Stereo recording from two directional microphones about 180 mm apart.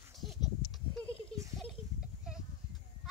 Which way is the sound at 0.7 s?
5° left (ahead or behind).